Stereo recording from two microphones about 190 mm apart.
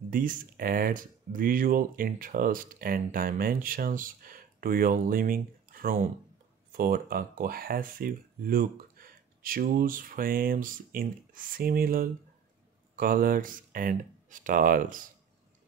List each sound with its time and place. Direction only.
0.1 s speech: 45° right (ahead or behind)